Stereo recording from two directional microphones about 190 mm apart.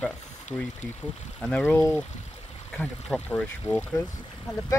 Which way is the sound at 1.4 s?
5° left (ahead or behind).